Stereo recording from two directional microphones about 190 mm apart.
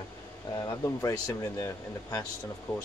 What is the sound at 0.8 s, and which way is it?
Speech, 15° left (ahead or behind).